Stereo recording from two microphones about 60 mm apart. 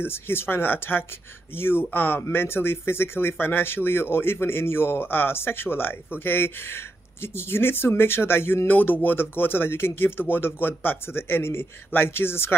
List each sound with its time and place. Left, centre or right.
0.0 s speech: left